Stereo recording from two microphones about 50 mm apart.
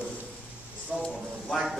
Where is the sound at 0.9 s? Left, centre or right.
Centre.